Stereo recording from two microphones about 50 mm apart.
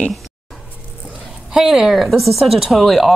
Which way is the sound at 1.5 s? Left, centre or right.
Centre.